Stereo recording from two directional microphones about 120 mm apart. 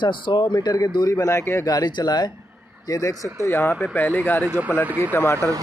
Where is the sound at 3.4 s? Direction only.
20° left (ahead or behind).